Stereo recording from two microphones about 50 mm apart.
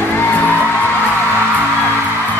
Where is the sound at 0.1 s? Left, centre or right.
Left.